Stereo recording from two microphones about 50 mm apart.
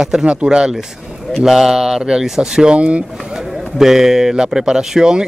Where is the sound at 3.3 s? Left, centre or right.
Centre.